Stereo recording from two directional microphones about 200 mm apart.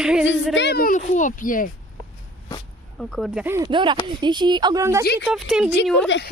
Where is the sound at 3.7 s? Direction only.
25° right (ahead or behind).